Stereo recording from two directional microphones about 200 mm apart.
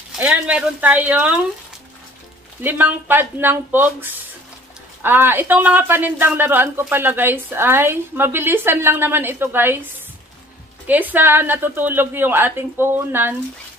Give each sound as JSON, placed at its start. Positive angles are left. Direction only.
{"t": 0.2, "sound": "speech", "side_deg": -5}
{"t": 2.6, "sound": "speech", "side_deg": -10}
{"t": 10.9, "sound": "speech", "side_deg": -10}